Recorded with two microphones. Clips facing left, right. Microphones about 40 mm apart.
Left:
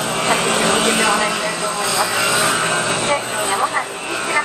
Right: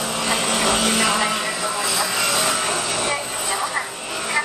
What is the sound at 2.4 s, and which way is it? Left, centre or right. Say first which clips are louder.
Vehicle: left 5 dB; left.